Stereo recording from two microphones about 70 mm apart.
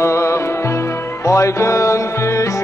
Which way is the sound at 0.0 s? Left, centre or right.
Left.